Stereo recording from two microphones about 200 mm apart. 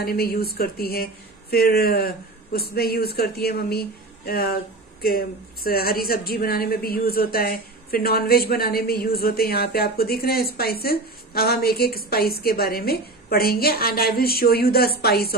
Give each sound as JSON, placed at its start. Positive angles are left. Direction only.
{"t": 0.0, "sound": "speech", "side_deg": 50}